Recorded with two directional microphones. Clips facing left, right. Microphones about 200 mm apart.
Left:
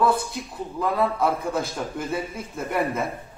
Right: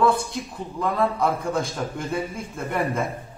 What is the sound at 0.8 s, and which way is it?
Speech, 5° left (ahead or behind).